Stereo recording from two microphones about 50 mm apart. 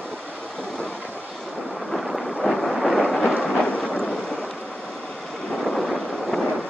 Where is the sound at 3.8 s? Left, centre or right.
Centre.